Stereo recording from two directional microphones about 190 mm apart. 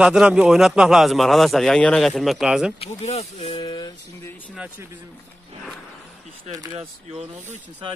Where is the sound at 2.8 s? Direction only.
35° left (ahead or behind).